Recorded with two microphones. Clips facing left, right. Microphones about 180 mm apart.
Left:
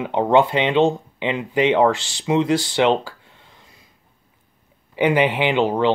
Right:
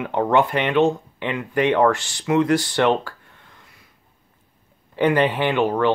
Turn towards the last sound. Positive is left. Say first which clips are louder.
# left 1 dB
turn(degrees=15)  # may be behind; listen again after turning